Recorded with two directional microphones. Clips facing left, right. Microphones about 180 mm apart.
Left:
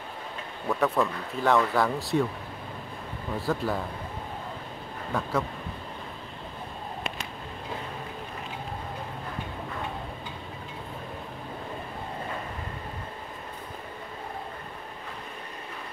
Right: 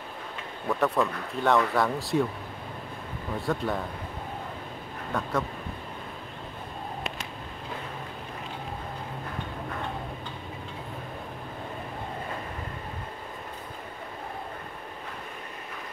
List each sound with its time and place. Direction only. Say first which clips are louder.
0.7 s speech: even; centre (ahead or behind)
3.3 s speech: even; centre (ahead or behind)
5.1 s speech: left 1 dB; centre (ahead or behind)